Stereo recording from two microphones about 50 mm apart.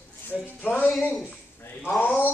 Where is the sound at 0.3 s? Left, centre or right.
Centre.